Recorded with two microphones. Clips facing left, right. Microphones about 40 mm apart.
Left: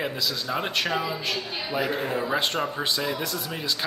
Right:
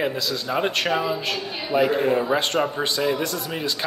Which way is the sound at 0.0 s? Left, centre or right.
Centre.